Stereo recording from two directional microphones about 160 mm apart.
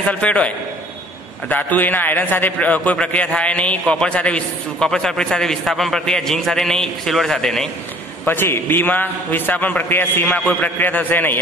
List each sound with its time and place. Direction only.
0.0 s a man's voice: 5° left (ahead or behind)
1.5 s a man's voice: 10° left (ahead or behind)
8.3 s a man's voice: 15° left (ahead or behind)